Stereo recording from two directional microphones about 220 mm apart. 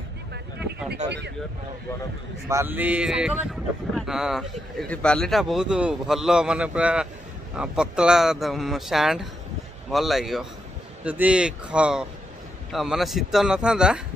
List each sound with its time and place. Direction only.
1.0 s speech: 50° right (ahead or behind)
2.4 s a sound: 10° right (ahead or behind)
3.9 s a man's voice: centre (ahead or behind)